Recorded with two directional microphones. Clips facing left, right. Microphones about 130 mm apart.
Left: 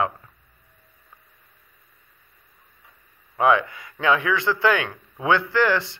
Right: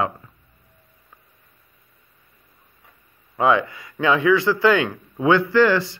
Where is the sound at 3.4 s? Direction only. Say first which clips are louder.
Right 1 dB; 20° right (ahead or behind).